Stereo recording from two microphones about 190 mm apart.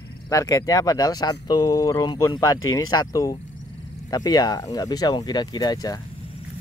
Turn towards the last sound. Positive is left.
turn(degrees=20)  # may be behind; listen again after turning